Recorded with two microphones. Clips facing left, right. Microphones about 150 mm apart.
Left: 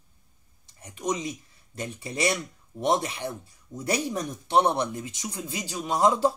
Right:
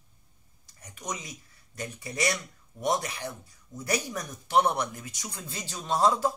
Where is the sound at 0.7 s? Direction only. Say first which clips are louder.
Left 8 dB; 25° left (ahead or behind).